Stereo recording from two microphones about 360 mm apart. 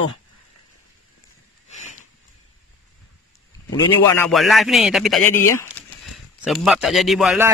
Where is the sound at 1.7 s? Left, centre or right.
Centre.